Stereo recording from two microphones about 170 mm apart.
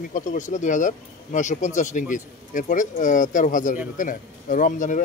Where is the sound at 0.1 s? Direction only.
50° left (ahead or behind).